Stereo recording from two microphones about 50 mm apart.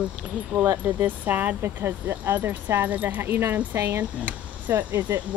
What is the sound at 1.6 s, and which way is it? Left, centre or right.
Speech, right.